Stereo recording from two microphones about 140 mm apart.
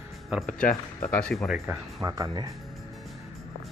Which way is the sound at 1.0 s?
5° left (ahead or behind).